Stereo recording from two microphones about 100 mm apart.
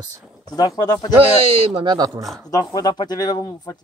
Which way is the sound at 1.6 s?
65° right (ahead or behind).